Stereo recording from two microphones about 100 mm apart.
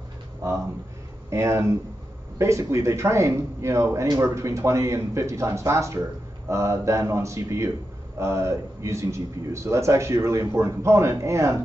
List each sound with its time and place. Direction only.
1.3 s a man's voice: 30° right (ahead or behind)